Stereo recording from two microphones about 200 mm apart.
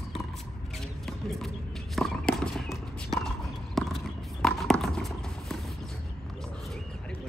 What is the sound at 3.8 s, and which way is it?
Horse, centre (ahead or behind).